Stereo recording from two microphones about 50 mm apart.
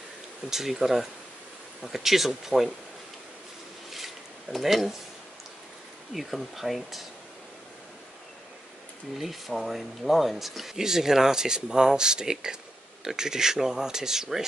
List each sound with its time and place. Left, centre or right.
0.5 s speech: centre
3.9 s a sound: centre
6.1 s speech: centre
9.2 s speech: centre